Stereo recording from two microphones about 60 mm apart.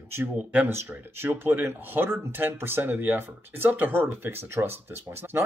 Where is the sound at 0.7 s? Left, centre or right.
Right.